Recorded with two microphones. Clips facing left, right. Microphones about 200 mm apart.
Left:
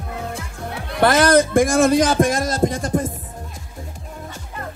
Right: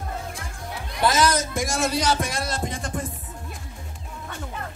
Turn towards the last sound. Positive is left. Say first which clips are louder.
# left 9 dB
turn(degrees=40)  # may be behind; listen again after turning